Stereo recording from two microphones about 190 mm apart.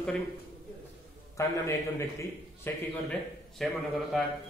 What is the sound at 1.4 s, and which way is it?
A man's voice, 15° left (ahead or behind).